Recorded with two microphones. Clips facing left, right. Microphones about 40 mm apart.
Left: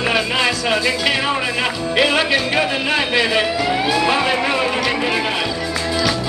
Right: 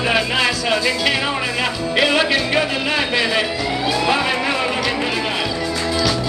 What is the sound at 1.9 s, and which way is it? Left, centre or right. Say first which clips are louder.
A man's voice: even; centre.